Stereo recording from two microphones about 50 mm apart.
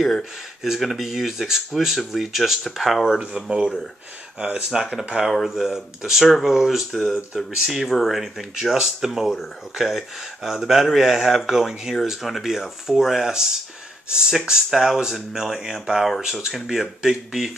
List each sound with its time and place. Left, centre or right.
0.6 s speech: centre
3.2 s speech: centre
4.6 s speech: centre